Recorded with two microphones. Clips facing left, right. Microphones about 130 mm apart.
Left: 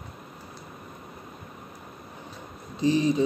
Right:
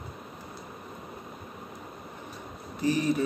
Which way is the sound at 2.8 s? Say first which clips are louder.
Left 3 dB; 20° left (ahead or behind).